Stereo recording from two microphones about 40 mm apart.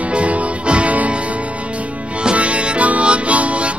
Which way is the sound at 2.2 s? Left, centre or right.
Right.